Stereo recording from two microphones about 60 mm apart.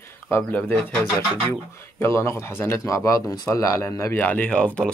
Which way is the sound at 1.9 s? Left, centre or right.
Left.